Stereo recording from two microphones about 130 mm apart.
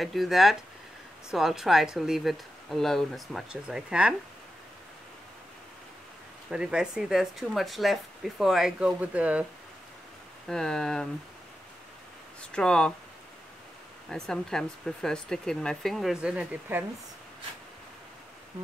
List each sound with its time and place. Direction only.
0.0 s speech: centre (ahead or behind)
6.5 s speech: 5° right (ahead or behind)
10.5 s speech: 5° left (ahead or behind)
12.4 s speech: 5° left (ahead or behind)
14.0 s speech: 5° left (ahead or behind); by 16.8 s 10° right (ahead or behind)